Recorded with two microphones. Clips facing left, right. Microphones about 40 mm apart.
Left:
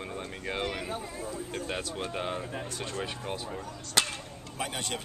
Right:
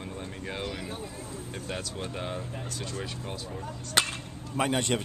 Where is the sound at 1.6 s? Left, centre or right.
Centre.